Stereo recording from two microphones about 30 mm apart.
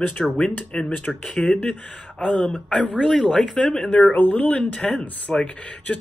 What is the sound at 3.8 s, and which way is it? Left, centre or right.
Speech, left.